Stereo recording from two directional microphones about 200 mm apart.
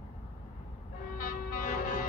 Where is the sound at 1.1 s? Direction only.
45° left (ahead or behind).